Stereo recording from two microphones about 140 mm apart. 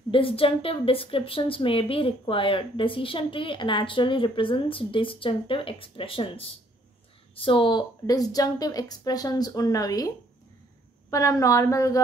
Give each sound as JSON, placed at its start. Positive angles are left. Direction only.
{"t": 0.1, "sound": "a woman's voice", "side_deg": 40}